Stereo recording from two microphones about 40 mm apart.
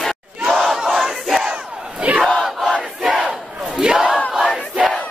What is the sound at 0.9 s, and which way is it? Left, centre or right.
Crowd, centre.